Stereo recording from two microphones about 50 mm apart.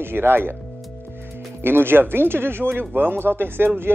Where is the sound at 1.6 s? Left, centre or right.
Right.